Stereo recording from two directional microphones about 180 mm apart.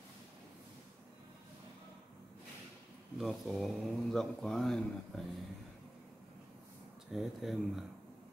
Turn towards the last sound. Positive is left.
turn(degrees=0)  # may be behind; listen again after turning